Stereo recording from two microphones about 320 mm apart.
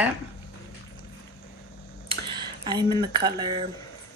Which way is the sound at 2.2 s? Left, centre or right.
Centre.